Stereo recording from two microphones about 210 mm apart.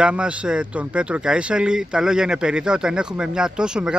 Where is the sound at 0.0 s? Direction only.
5° right (ahead or behind).